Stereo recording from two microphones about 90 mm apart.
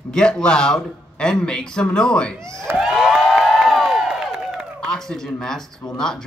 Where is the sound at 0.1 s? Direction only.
10° left (ahead or behind).